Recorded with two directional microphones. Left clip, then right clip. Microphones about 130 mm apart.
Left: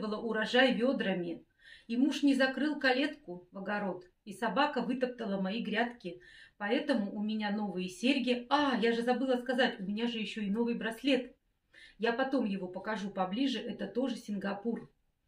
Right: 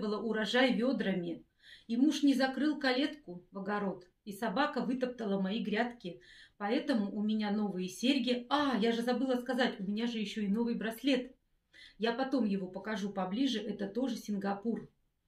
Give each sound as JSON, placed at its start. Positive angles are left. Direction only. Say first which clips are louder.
{"t": 0.0, "sound": "speech", "louder": "even", "side_deg": -20}